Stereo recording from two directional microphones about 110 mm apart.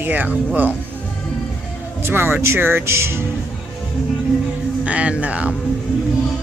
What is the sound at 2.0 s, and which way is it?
Speech, 20° right (ahead or behind).